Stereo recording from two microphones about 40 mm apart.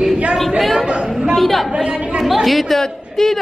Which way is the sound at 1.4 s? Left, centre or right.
Centre.